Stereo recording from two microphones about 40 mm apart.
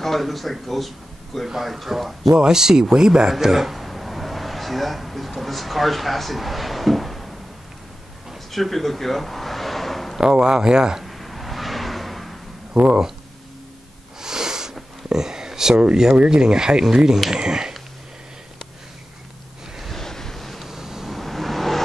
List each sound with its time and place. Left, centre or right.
0.0 s speech: centre
2.3 s a sound: centre
8.5 s a sound: centre
10.2 s speech: centre
11.1 s a sound: centre
12.7 s speech: centre
14.2 s sniff: centre
15.7 s speech: right
19.9 s waves: centre
20.6 s vehicle: centre
21.1 s vehicle: centre